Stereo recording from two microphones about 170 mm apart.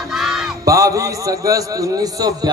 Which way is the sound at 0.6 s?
20° right (ahead or behind).